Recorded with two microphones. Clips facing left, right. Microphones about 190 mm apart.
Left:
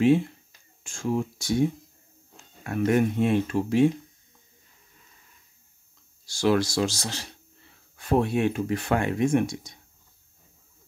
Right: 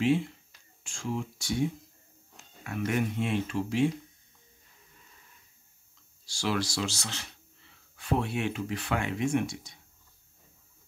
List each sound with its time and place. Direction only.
0.0 s speech: 50° left (ahead or behind)
6.2 s speech: 50° left (ahead or behind)